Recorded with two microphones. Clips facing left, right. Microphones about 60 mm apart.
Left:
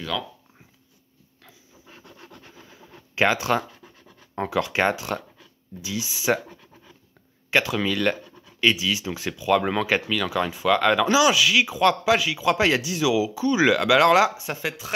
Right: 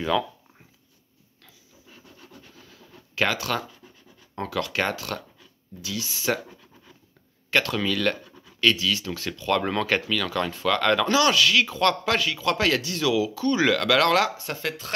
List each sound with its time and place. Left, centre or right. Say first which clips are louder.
1.9 s scratch: left 3 dB; left
2.4 s rub: left 3 dB; left
3.2 s speech: left 4 dB; left
7.5 s speech: left 1 dB; centre